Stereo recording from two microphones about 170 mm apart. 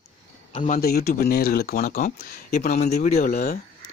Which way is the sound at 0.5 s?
50° left (ahead or behind).